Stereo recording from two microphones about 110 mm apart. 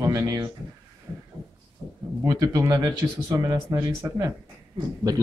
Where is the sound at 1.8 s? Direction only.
25° left (ahead or behind).